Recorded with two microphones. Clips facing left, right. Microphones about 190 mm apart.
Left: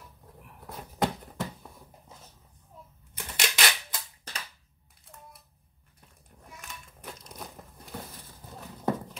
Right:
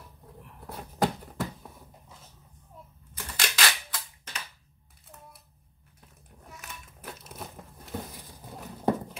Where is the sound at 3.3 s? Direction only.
25° left (ahead or behind).